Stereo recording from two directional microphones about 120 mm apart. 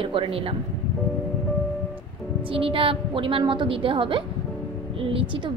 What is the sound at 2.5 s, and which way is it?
A woman's voice, 50° right (ahead or behind).